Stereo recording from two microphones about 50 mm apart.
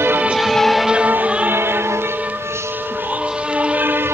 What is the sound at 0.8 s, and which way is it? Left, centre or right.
Music, right.